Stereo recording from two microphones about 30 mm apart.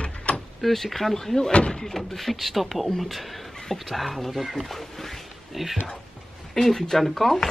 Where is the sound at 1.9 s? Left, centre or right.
Centre.